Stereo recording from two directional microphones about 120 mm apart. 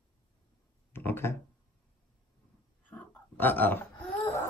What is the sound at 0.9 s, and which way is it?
Speech, 20° left (ahead or behind).